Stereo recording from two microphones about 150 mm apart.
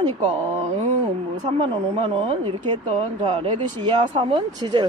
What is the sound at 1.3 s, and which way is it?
A woman's voice, 45° right (ahead or behind).